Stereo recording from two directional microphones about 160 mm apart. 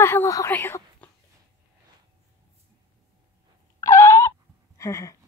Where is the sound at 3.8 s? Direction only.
20° left (ahead or behind).